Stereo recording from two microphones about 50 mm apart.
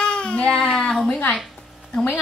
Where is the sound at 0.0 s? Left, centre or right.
Centre.